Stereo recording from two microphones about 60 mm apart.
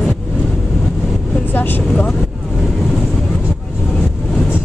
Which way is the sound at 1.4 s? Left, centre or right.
Left.